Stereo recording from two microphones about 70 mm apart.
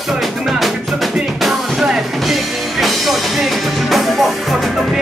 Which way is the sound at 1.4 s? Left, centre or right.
Centre.